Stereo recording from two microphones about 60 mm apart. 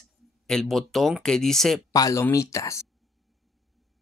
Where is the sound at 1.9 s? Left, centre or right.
Left.